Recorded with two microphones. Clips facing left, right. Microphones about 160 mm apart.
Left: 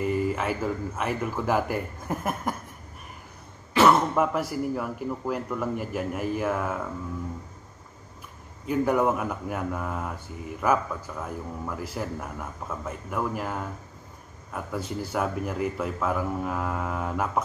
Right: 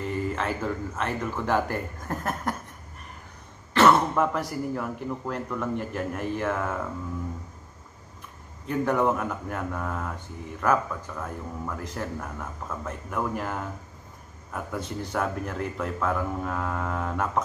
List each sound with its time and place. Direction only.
0.0 s speech: 5° left (ahead or behind)
3.7 s speech: 10° left (ahead or behind)
8.6 s a man's voice: 5° left (ahead or behind)